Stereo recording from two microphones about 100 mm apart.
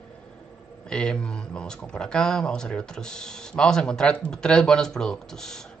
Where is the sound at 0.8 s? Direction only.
10° left (ahead or behind).